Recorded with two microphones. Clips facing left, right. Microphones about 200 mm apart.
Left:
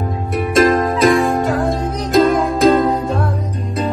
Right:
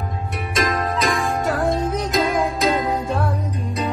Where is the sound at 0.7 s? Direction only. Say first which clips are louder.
Left 9 dB; 50° left (ahead or behind).